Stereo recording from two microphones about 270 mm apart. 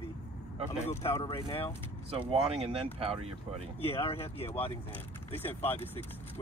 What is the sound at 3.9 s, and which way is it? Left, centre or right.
Speech, left.